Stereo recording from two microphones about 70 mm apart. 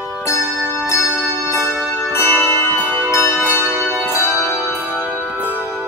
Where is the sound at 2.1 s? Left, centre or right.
Left.